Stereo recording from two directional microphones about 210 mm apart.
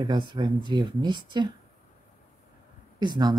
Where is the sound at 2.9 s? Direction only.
20° right (ahead or behind).